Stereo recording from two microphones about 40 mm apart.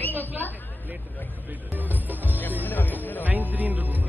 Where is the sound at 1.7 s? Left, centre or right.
Right.